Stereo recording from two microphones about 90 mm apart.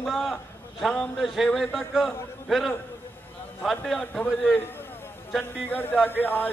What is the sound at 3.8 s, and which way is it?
Speech, centre (ahead or behind).